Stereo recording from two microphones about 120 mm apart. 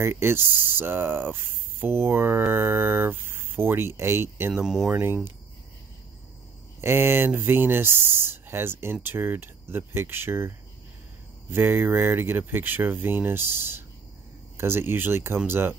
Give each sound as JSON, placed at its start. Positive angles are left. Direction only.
{"t": 0.0, "sound": "speech", "side_deg": -20}
{"t": 4.6, "sound": "speech", "side_deg": -5}
{"t": 6.8, "sound": "speech", "side_deg": -20}
{"t": 11.5, "sound": "speech", "side_deg": -20}